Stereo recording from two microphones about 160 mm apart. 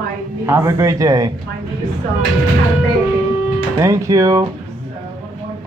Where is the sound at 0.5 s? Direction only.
15° right (ahead or behind).